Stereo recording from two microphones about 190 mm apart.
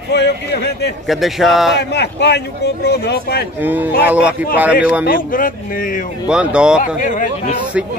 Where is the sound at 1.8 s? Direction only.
60° left (ahead or behind).